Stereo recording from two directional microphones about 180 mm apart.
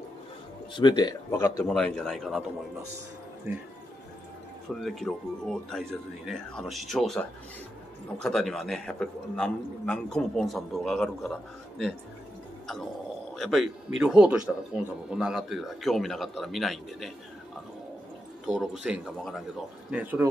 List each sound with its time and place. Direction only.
0.7 s speech: 25° left (ahead or behind)
1.3 s a man's voice: 15° left (ahead or behind)
3.5 s speech: 10° right (ahead or behind)
4.8 s a man's voice: centre (ahead or behind)
13.4 s a man's voice: centre (ahead or behind)
18.5 s a man's voice: centre (ahead or behind)